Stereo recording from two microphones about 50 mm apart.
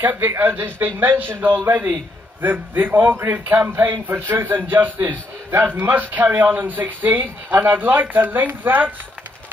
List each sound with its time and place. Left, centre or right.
0.0 s a man's voice: right